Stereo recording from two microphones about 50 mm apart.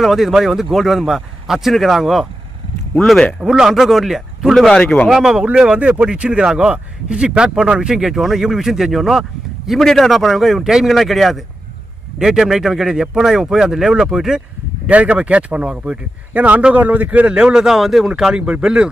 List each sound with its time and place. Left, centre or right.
0.0 s a man's voice: centre
3.4 s a man's voice: centre
7.9 s a man's voice: centre
14.9 s speech: right
16.3 s speech: right